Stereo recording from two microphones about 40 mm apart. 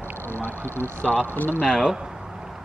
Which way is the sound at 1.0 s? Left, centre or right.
Left.